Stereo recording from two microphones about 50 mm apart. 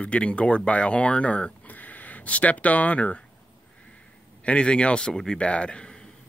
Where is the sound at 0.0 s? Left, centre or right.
Left.